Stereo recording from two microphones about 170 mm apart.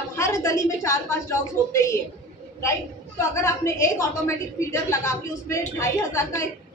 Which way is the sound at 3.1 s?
15° left (ahead or behind).